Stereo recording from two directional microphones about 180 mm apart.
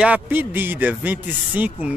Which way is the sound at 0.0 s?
10° right (ahead or behind).